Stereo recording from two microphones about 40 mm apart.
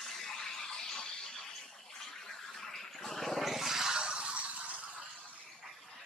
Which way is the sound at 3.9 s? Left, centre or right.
Right.